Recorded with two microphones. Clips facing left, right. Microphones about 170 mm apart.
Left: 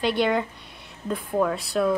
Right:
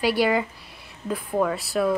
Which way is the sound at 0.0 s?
5° right (ahead or behind).